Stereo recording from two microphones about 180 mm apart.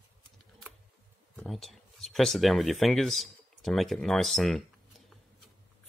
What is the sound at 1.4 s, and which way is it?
Speech, centre (ahead or behind).